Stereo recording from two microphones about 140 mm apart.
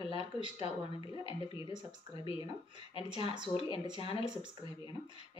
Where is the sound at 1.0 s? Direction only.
40° left (ahead or behind).